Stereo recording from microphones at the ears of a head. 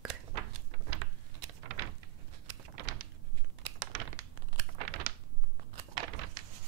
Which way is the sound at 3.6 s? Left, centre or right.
Right.